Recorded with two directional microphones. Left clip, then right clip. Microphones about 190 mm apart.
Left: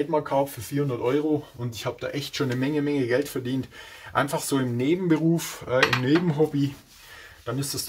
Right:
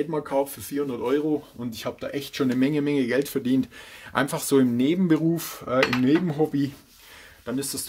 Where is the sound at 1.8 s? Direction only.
45° right (ahead or behind).